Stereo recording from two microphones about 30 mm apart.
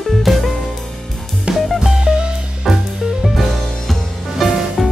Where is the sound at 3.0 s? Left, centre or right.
Centre.